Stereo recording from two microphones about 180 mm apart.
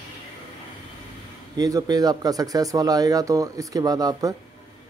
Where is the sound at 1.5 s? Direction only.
20° right (ahead or behind).